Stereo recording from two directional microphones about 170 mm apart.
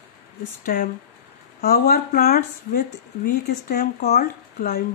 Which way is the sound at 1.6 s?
65° left (ahead or behind).